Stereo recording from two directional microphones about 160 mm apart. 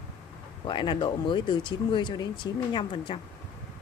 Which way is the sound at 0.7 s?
30° left (ahead or behind).